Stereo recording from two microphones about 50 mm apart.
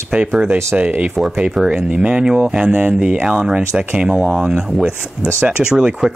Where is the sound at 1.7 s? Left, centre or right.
Right.